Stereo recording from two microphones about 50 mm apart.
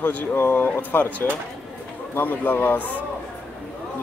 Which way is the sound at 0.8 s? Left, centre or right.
Left.